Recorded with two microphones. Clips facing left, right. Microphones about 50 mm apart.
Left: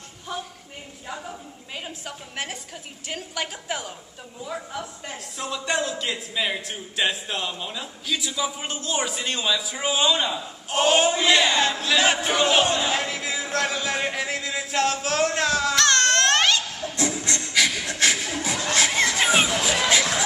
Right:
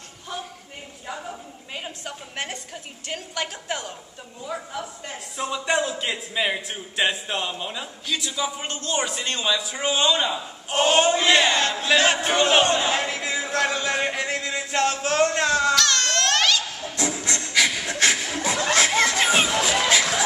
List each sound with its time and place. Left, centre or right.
1.0 s a woman's voice: centre
8.1 s a man's voice: centre
11.5 s a sound: centre
12.0 s a man's voice: centre
12.6 s a sound: centre
15.7 s baby cry: left
17.0 s rub: centre
17.9 s shuffle: centre
19.0 s music: centre